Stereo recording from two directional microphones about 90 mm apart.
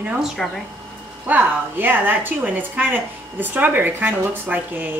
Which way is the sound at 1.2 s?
20° right (ahead or behind).